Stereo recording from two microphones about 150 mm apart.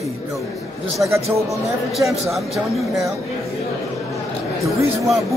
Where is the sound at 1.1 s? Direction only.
20° right (ahead or behind).